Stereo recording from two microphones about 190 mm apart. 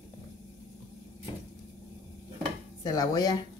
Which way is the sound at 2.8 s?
20° left (ahead or behind).